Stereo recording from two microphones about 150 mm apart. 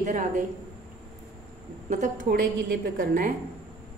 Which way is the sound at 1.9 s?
55° right (ahead or behind).